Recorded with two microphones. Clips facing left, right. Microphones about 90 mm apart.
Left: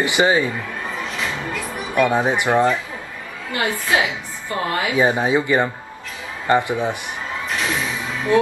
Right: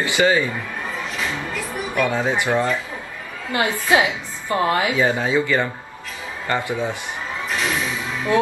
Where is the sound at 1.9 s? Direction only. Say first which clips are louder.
Left 3 dB; 20° left (ahead or behind).